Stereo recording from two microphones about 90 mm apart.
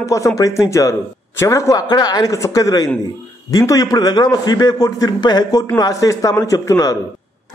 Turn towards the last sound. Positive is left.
turn(degrees=40)  # may be behind; listen again after turning